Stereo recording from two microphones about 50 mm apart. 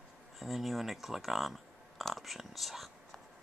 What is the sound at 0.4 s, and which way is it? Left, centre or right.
Speech, centre.